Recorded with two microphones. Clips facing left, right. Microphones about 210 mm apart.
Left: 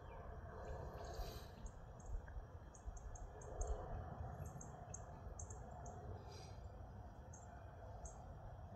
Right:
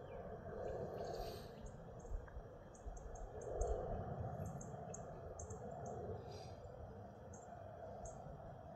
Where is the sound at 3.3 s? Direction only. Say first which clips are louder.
Right 9 dB; 45° right (ahead or behind).